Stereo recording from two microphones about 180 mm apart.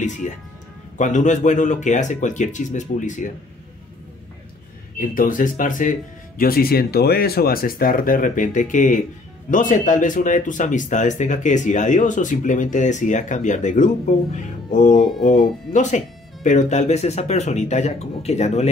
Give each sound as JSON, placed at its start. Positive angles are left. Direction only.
{"t": 0.0, "sound": "speech", "side_deg": 45}
{"t": 4.9, "sound": "speech", "side_deg": 50}
{"t": 15.0, "sound": "speech", "side_deg": 0}
{"t": 15.7, "sound": "speech", "side_deg": 40}